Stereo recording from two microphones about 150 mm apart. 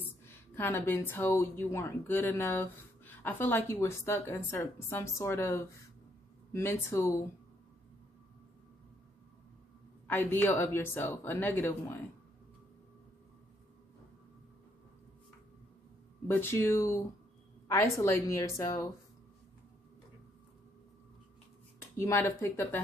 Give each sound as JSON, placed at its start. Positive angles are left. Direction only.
{"t": 0.3, "sound": "speech", "side_deg": 15}
{"t": 10.0, "sound": "speech", "side_deg": 15}
{"t": 16.3, "sound": "a woman's voice", "side_deg": 15}
{"t": 21.9, "sound": "speech", "side_deg": 15}